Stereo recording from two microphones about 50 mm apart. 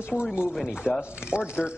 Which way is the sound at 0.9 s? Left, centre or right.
Centre.